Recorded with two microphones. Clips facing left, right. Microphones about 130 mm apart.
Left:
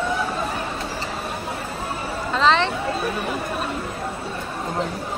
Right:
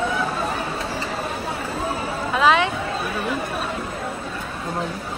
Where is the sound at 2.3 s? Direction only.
10° right (ahead or behind).